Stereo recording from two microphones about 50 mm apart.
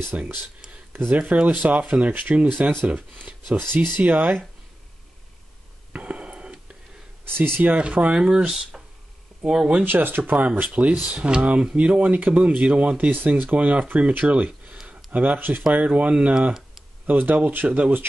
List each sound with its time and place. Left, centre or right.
0.1 s speech: right
2.9 s speech: right
5.9 s a sound: right
7.2 s speech: right
7.7 s speech: right
9.8 s speech: right
15.7 s speech: right
17.0 s speech: right
17.6 s speech: right